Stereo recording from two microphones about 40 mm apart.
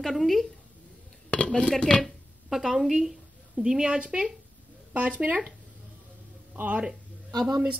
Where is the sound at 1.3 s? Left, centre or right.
Left.